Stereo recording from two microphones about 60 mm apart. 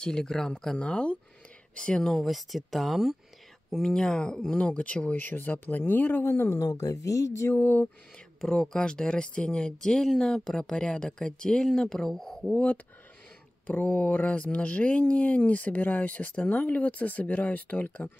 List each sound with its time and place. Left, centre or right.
0.0 s speech: centre
2.0 s speech: centre
3.7 s speech: centre; by 6.6 s left
6.6 s speech: left
7.5 s a sound: left
8.4 s speech: centre
13.7 s speech: left